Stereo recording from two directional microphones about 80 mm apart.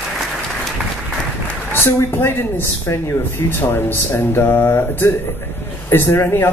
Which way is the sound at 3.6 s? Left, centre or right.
Left.